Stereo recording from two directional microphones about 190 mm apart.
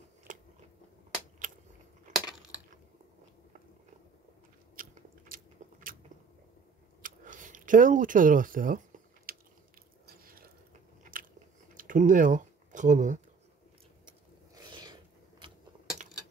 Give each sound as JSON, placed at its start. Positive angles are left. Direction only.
{"t": 2.1, "sound": "coin", "side_deg": -40}
{"t": 4.8, "sound": "biting", "side_deg": -50}
{"t": 7.0, "sound": "a sound", "side_deg": -45}
{"t": 14.0, "sound": "gears", "side_deg": -25}